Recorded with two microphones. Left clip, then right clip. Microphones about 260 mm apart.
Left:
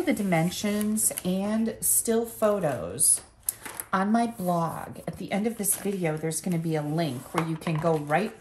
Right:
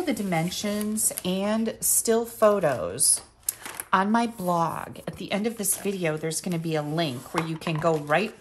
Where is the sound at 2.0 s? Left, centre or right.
Right.